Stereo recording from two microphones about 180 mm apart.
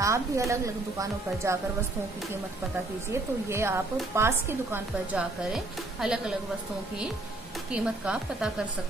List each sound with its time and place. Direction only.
0.0 s a woman's voice: 15° right (ahead or behind)
3.1 s a woman's voice: 15° right (ahead or behind)
7.7 s speech: 5° right (ahead or behind)